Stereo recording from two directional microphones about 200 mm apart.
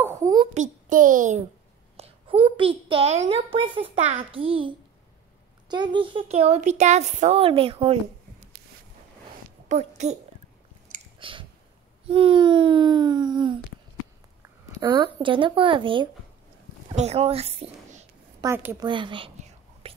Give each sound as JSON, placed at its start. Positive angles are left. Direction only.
{"t": 0.0, "sound": "a sound", "side_deg": -15}
{"t": 0.6, "sound": "a child's voice", "side_deg": -40}
{"t": 2.0, "sound": "a child's voice", "side_deg": -25}
{"t": 9.7, "sound": "speech", "side_deg": -35}
{"t": 11.1, "sound": "a sound", "side_deg": -25}
{"t": 12.1, "sound": "a child's voice", "side_deg": -25}
{"t": 14.8, "sound": "a child's voice", "side_deg": -25}
{"t": 18.4, "sound": "a woman's voice", "side_deg": -10}
{"t": 18.9, "sound": "a child's voice", "side_deg": -25}